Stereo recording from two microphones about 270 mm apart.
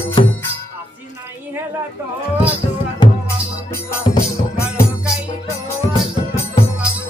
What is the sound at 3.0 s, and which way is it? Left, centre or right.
Music, centre.